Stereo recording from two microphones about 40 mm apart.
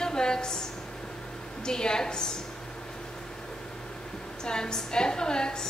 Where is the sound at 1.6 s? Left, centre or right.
Centre.